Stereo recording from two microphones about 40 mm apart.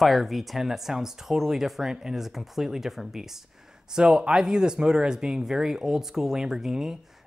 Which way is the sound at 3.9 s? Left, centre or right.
Right.